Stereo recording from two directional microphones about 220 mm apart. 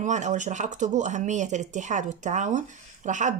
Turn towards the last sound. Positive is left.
turn(degrees=-35)  # may be behind; listen again after turning